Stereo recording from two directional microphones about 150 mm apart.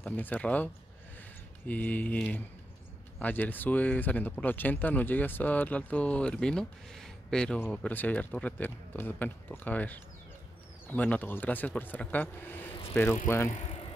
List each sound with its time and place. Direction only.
0.0 s speech: 10° left (ahead or behind)
1.7 s speech: 10° left (ahead or behind)
13.5 s bicycle: 45° left (ahead or behind)